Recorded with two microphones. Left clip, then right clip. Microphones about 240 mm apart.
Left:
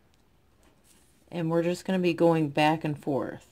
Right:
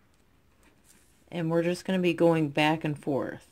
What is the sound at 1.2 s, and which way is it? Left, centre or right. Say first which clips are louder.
Speech: even; centre.